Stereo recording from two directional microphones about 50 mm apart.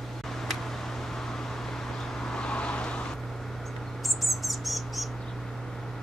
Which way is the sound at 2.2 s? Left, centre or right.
Centre.